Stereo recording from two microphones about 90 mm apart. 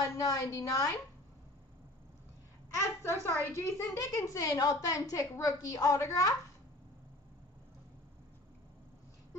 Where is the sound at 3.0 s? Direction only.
30° left (ahead or behind).